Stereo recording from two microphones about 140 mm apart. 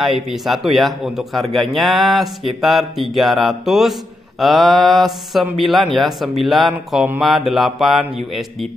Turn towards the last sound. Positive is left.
turn(degrees=0)  # may be behind; listen again after turning